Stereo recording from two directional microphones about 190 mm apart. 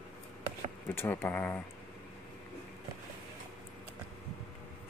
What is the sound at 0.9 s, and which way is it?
Speech, 10° left (ahead or behind).